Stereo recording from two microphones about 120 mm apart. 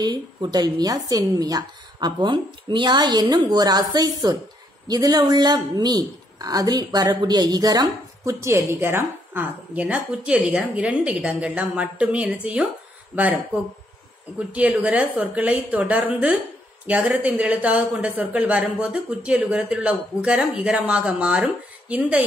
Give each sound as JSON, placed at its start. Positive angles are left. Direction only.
{"t": 0.0, "sound": "a woman's voice", "side_deg": -35}
{"t": 14.5, "sound": "speech", "side_deg": -10}